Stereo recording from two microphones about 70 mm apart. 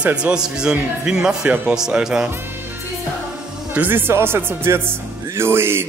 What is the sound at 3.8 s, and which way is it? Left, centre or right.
Speech, right.